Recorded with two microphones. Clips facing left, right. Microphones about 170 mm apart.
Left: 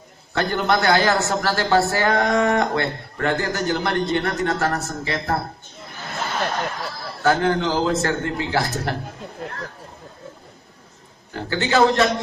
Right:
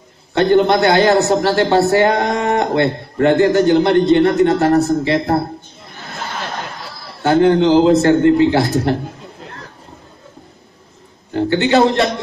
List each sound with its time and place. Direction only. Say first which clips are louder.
0.3 s a man's voice: right 9 dB; 25° right (ahead or behind)
7.2 s a man's voice: right 8 dB; 25° right (ahead or behind)
11.3 s a man's voice: right 6 dB; 25° right (ahead or behind)